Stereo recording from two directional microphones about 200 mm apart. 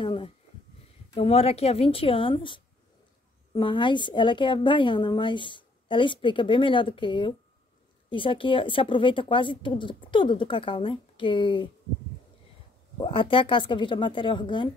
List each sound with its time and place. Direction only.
0.0 s a woman's voice: 25° left (ahead or behind)
13.0 s a woman's voice: 25° left (ahead or behind)